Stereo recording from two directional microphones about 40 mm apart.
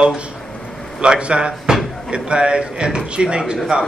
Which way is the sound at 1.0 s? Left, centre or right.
Right.